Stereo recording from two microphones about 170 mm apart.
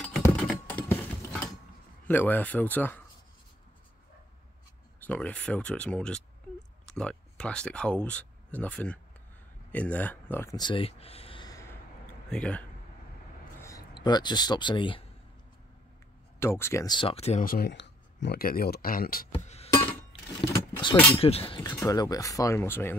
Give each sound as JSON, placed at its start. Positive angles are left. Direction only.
{"t": 0.5, "sound": "a sound", "side_deg": 10}
{"t": 2.0, "sound": "speech", "side_deg": 10}
{"t": 5.0, "sound": "speech", "side_deg": 10}
{"t": 10.5, "sound": "speech", "side_deg": 25}
{"t": 12.3, "sound": "speech", "side_deg": 5}
{"t": 13.6, "sound": "a sound", "side_deg": 20}
{"t": 13.9, "sound": "speech", "side_deg": 25}
{"t": 16.3, "sound": "speech", "side_deg": 15}
{"t": 17.5, "sound": "speech", "side_deg": 70}
{"t": 19.3, "sound": "music", "side_deg": 35}
{"t": 19.9, "sound": "a sound", "side_deg": 30}
{"t": 21.2, "sound": "speech", "side_deg": 35}